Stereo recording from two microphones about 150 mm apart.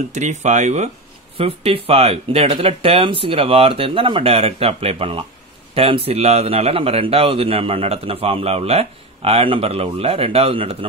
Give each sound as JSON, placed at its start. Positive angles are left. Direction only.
{"t": 0.1, "sound": "speech", "side_deg": -50}
{"t": 1.4, "sound": "a man's voice", "side_deg": -40}